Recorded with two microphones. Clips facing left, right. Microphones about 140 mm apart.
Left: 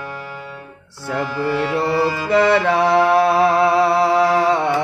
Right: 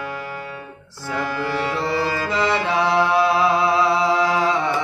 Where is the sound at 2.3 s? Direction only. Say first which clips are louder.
Left 8 dB; 55° left (ahead or behind).